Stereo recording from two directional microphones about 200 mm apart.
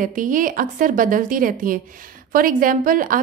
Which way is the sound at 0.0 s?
40° right (ahead or behind).